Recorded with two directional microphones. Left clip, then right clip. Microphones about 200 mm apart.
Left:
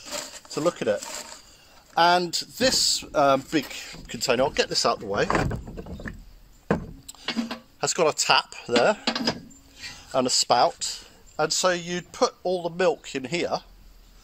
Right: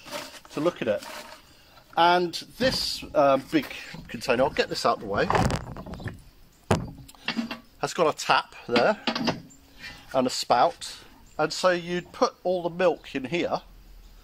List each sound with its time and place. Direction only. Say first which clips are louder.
0.0 s a sound: left 2 dB; 30° left (ahead or behind)
2.0 s speech: left 1 dB; 45° left (ahead or behind)
7.1 s speech: left 1 dB; 30° left (ahead or behind)